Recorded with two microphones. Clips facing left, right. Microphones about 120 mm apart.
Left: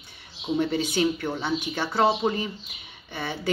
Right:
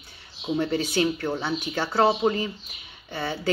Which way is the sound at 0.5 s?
50° right (ahead or behind).